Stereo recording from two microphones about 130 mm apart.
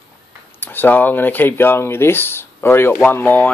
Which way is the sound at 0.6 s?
15° left (ahead or behind).